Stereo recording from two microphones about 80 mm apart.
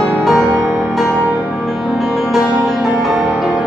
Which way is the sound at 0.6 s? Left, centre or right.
Right.